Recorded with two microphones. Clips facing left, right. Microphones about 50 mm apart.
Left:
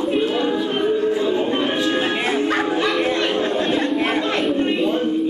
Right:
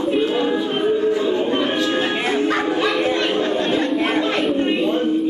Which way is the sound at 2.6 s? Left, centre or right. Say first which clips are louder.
Right 1 dB; centre.